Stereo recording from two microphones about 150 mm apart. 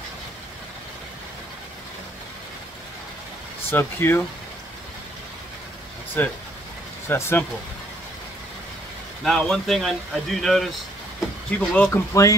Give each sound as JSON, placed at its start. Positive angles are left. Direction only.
{"t": 3.7, "sound": "speech", "side_deg": 15}
{"t": 6.2, "sound": "speech", "side_deg": 10}
{"t": 9.2, "sound": "speech", "side_deg": 5}
{"t": 12.1, "sound": "speech", "side_deg": 20}